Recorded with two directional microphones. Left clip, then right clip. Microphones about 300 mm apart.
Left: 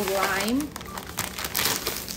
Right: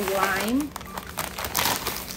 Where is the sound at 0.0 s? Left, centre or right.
Centre.